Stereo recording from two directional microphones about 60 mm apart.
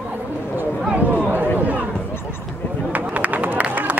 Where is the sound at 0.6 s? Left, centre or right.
Right.